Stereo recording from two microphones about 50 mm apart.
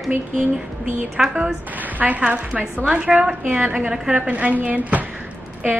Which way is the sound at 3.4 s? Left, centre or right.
Right.